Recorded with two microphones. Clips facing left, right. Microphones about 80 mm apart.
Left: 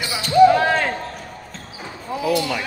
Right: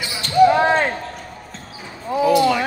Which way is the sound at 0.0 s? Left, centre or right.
Centre.